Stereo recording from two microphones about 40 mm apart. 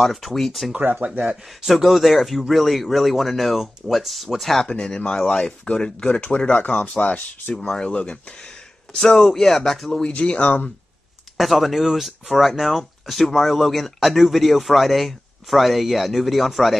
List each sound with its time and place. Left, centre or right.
0.0 s speech: centre
1.3 s speech: centre
4.6 s speech: left
7.0 s speech: left
8.9 s speech: centre
10.0 s speech: left
11.3 s speech: centre